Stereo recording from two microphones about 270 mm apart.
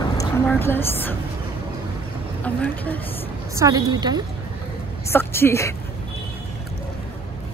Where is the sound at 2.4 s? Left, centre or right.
Centre.